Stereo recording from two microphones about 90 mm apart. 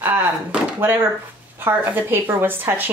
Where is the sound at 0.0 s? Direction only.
20° right (ahead or behind).